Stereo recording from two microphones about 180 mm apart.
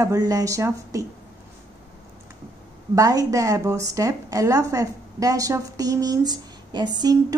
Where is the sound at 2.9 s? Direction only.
20° right (ahead or behind).